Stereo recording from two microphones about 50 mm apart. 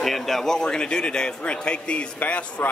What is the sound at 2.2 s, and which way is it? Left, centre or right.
Speech, left.